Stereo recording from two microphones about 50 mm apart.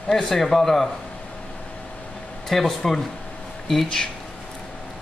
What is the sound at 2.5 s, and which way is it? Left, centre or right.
Speech, centre.